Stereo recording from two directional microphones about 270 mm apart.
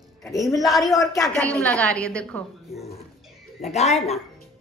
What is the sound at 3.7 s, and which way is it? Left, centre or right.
Speech, left.